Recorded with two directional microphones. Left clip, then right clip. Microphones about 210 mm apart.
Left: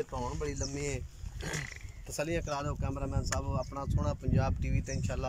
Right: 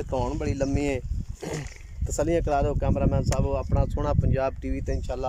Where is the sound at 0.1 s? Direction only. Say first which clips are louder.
Right 9 dB; 50° right (ahead or behind).